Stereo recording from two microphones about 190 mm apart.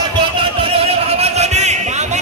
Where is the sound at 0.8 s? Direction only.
35° right (ahead or behind).